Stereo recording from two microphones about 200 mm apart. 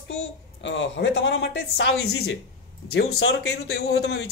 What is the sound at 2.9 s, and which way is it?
Speech, 90° left.